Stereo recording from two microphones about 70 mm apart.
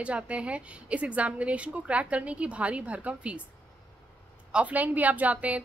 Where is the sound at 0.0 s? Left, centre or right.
Centre.